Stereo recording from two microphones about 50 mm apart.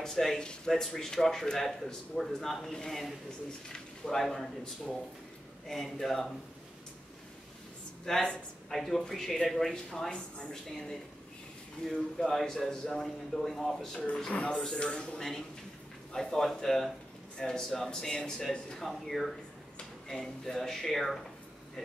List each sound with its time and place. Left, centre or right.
0.0 s speech: centre
5.7 s speech: centre
8.0 s speech: centre
14.3 s speech: centre
15.1 s speech: centre